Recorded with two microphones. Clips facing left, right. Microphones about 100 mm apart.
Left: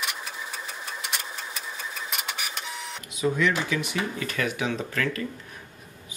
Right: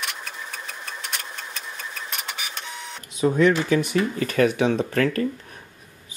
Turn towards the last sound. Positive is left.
turn(degrees=-45)  # may be behind; listen again after turning